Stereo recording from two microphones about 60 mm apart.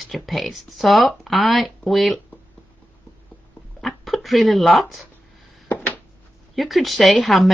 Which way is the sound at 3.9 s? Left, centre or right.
Centre.